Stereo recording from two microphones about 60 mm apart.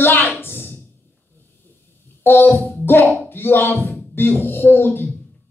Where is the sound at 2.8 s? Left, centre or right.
Left.